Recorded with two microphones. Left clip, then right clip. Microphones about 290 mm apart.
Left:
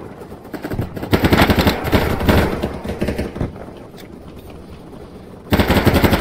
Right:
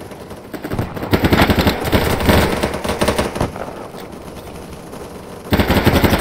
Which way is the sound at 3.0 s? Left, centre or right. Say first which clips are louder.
Right 6 dB; right.